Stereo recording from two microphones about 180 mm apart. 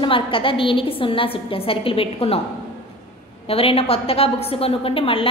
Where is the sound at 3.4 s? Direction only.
30° left (ahead or behind).